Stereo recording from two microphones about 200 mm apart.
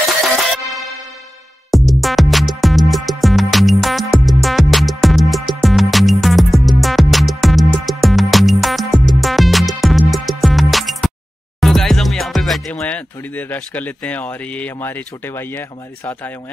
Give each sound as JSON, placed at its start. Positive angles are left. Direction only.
{"t": 1.7, "sound": "music", "side_deg": 0}